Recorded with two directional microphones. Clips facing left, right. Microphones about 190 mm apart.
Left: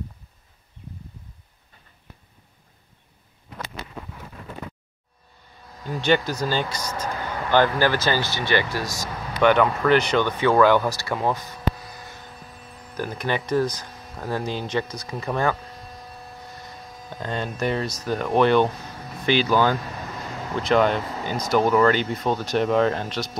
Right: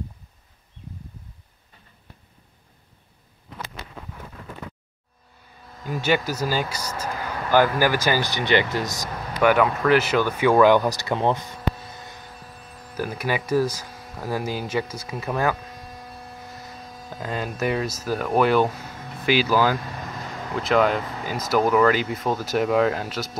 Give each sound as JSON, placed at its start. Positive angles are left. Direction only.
{"t": 5.9, "sound": "speech", "side_deg": -5}
{"t": 9.4, "sound": "speech", "side_deg": -5}
{"t": 12.9, "sound": "speech", "side_deg": -10}
{"t": 16.5, "sound": "speech", "side_deg": -5}